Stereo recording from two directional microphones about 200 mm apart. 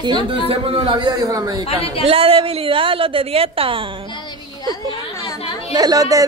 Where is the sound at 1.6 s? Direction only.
30° left (ahead or behind).